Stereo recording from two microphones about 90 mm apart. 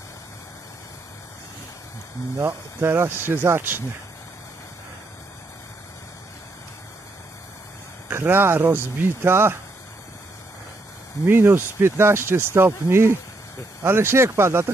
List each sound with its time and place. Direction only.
2.3 s speech: 30° right (ahead or behind)
8.1 s speech: 25° right (ahead or behind)
11.2 s speech: 25° right (ahead or behind)